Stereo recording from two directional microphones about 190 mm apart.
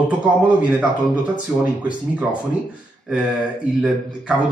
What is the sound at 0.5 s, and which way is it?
Speech, 5° right (ahead or behind).